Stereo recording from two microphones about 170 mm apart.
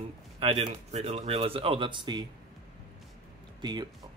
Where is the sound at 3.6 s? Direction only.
25° right (ahead or behind).